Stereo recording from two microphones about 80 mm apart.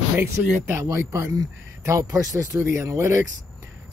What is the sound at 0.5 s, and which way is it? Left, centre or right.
Speech, right.